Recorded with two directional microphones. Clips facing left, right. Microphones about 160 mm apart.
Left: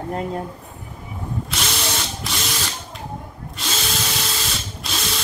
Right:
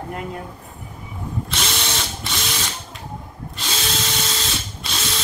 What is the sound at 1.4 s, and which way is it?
Drill, centre (ahead or behind).